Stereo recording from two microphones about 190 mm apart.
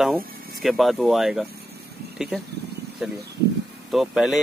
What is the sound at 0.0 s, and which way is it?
Speech, centre (ahead or behind).